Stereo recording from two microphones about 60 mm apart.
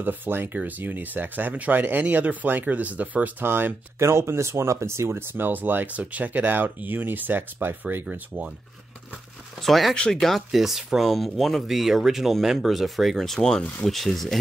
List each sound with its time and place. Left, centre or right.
0.0 s speech: right
3.4 s speech: right
4.0 s speech: right
9.6 s speech: centre